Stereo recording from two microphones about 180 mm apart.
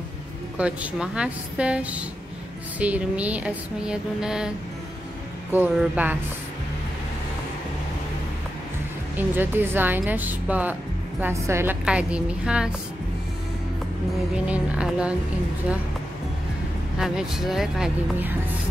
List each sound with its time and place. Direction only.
0.6 s speech: 5° right (ahead or behind)
5.5 s speech: 10° right (ahead or behind)
9.1 s speech: 10° right (ahead or behind)
14.3 s speech: 5° right (ahead or behind)
17.0 s speech: 5° right (ahead or behind)